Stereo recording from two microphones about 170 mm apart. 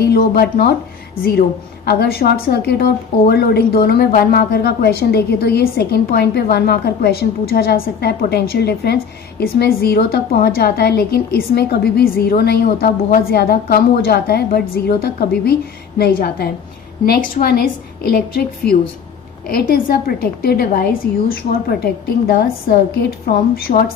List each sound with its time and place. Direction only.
0.0 s a woman's voice: 65° left (ahead or behind)
1.9 s a woman's voice: 65° left (ahead or behind)
19.4 s a woman's voice: 60° left (ahead or behind)